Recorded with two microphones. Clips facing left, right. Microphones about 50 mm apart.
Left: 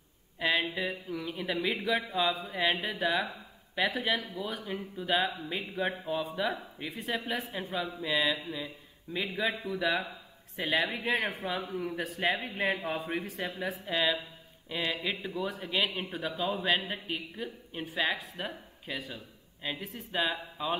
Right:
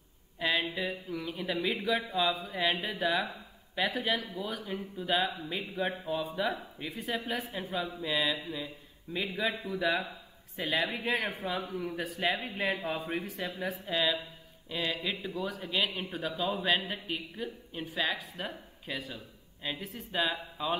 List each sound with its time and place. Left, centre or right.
0.4 s speech: centre
11.0 s speech: centre